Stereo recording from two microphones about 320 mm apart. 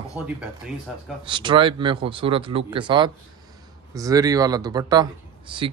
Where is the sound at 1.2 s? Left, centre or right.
Centre.